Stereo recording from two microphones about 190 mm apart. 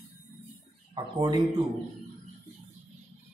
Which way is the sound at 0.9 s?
25° right (ahead or behind).